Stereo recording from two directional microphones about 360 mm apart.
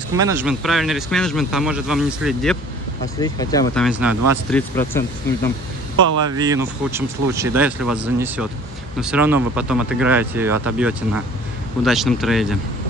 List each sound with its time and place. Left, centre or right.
0.1 s speech: centre
6.3 s speech: centre